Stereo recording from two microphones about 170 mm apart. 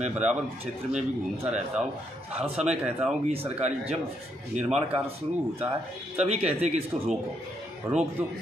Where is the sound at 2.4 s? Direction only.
40° right (ahead or behind).